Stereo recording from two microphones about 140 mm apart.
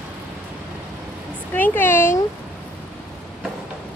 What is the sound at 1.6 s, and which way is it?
Speech, 15° left (ahead or behind).